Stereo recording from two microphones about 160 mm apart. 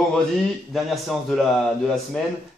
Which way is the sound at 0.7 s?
Centre (ahead or behind).